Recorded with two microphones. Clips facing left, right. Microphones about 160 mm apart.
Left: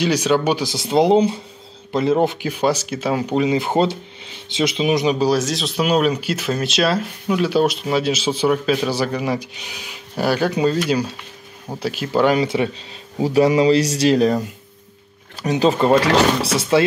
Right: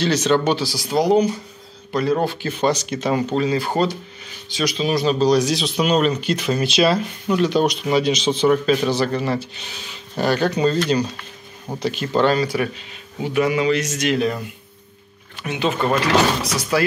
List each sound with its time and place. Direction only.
0.0 s speech: 10° left (ahead or behind)
0.7 s speech: 25° left (ahead or behind); by 3.3 s 5° left (ahead or behind)
3.3 s speech: 20° left (ahead or behind)
12.4 s speech: 25° left (ahead or behind)
13.2 s speech: 35° left (ahead or behind)
15.4 s speech: 35° left (ahead or behind)